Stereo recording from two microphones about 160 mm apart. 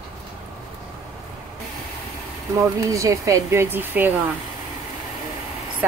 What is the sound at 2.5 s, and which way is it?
Speech, 20° right (ahead or behind).